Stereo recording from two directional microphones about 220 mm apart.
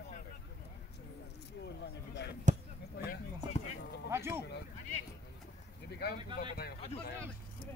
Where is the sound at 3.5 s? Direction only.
30° left (ahead or behind).